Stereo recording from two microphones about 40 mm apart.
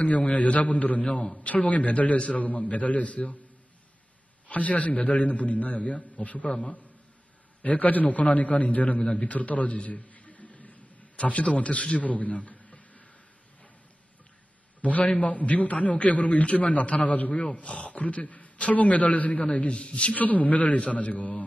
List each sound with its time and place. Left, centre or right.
0.0 s a man's voice: left
4.5 s a man's voice: left
9.2 s a sound: left
11.1 s a man's voice: left
14.8 s a man's voice: left